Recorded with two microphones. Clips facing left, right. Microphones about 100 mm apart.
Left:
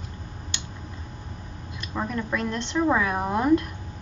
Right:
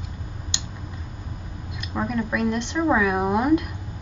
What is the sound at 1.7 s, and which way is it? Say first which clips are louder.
A woman's voice: right 3 dB; 15° right (ahead or behind).